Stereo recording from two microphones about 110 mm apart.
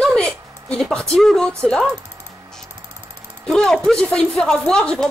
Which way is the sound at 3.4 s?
5° left (ahead or behind).